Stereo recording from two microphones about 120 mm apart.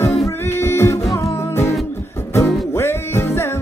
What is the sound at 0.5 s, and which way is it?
Music, 20° left (ahead or behind).